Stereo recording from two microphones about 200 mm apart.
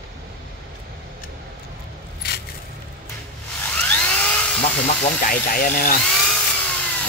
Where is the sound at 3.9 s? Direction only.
5° left (ahead or behind).